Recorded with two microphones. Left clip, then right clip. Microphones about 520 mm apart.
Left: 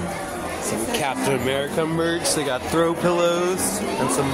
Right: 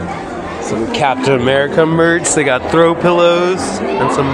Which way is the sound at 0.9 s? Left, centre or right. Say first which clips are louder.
Right 11 dB; left.